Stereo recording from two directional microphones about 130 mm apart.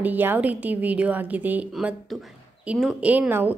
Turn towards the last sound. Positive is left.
turn(degrees=-15)  # may be behind; listen again after turning